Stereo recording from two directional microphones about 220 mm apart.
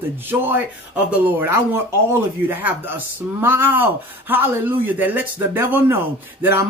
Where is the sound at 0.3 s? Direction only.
10° right (ahead or behind).